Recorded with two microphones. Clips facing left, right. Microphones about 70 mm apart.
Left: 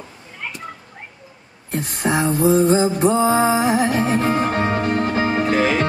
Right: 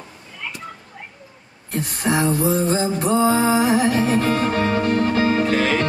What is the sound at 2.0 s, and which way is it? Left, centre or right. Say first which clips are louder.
Music: left 2 dB; left.